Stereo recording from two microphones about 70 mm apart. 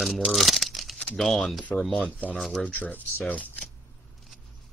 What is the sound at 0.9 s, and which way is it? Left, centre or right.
Speech, centre.